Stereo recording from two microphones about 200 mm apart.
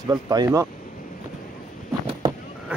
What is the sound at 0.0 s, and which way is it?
Speech, 20° right (ahead or behind).